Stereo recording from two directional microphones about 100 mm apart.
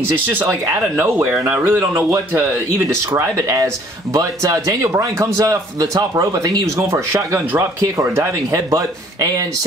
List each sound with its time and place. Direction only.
0.3 s speech: 25° right (ahead or behind)